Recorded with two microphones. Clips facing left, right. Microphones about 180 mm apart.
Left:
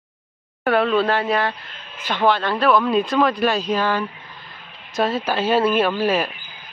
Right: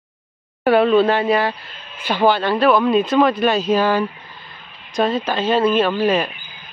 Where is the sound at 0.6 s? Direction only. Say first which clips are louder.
Right 5 dB; 5° right (ahead or behind).